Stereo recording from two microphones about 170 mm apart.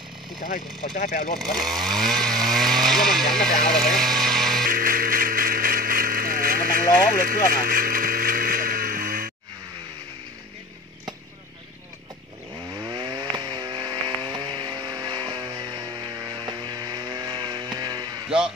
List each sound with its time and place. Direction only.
0.4 s speech: 50° left (ahead or behind)
1.4 s chainsaw: centre (ahead or behind)
2.4 s vehicle: centre (ahead or behind)
3.6 s music: 5° left (ahead or behind)
4.6 s music: 55° right (ahead or behind)
7.5 s vehicle: 60° right (ahead or behind)
12.7 s a sound: 25° right (ahead or behind)